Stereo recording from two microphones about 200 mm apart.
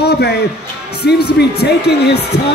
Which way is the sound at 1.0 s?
55° left (ahead or behind).